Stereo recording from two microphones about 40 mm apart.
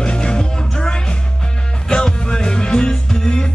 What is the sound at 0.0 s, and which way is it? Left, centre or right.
Music, left.